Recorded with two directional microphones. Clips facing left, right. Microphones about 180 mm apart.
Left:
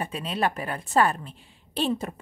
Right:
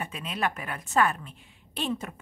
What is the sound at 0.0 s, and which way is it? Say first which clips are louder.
A woman's voice: left 4 dB; 35° left (ahead or behind).